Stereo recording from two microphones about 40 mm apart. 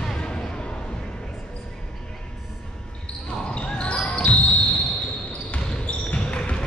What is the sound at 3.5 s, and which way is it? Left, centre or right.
Basketball bounce, left.